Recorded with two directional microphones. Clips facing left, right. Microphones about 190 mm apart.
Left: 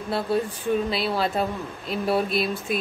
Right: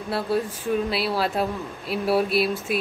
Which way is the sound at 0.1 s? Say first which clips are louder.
Even; 5° right (ahead or behind).